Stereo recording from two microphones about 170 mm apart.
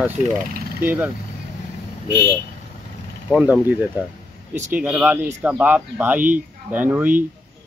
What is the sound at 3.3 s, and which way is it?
Speech, 10° right (ahead or behind).